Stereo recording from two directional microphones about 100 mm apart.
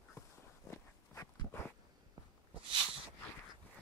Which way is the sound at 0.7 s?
30° left (ahead or behind).